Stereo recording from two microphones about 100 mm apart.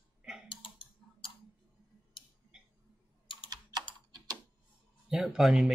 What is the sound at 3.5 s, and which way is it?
Computer keyboard, 40° right (ahead or behind).